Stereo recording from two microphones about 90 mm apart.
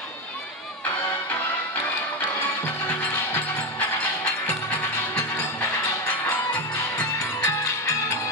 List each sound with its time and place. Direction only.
2.9 s music: 20° left (ahead or behind)
7.4 s music: 35° left (ahead or behind)